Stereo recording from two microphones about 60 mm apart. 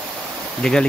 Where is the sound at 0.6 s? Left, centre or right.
Centre.